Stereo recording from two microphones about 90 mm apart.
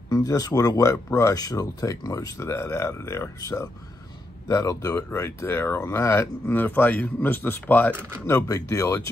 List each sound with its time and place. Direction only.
0.1 s speech: 40° left (ahead or behind)
6.4 s speech: 20° left (ahead or behind)
8.3 s speech: 30° left (ahead or behind)